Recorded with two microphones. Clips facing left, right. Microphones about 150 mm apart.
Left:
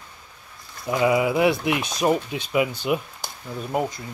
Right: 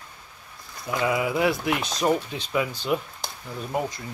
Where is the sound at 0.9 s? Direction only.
20° left (ahead or behind).